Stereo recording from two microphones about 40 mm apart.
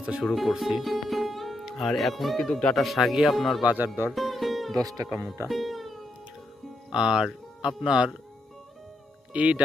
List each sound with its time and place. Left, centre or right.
0.2 s a man's voice: centre
2.4 s speech: centre
2.7 s a man's voice: centre
3.6 s speech: right
4.1 s speech: centre
5.5 s music: centre
6.9 s speech: centre
9.3 s speech: right